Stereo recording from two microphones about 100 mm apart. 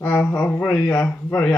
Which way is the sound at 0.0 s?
20° left (ahead or behind).